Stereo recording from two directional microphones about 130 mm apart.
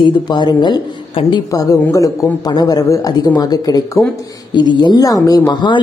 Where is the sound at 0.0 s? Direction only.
35° left (ahead or behind).